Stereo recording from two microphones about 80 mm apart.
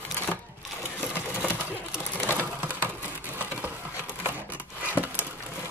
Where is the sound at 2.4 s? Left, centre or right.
Right.